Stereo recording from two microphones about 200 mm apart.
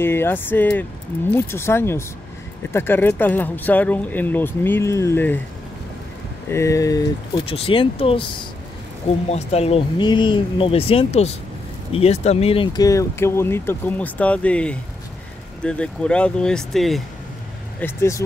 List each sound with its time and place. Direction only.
0.0 s speech: 10° left (ahead or behind)
6.5 s speech: 15° left (ahead or behind)
17.7 s speech: 10° left (ahead or behind)